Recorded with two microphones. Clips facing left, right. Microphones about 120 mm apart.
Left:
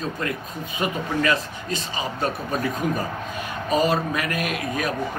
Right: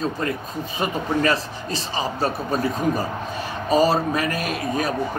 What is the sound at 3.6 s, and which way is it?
A man's voice, 35° right (ahead or behind).